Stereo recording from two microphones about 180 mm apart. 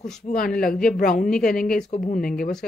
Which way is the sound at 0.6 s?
50° left (ahead or behind).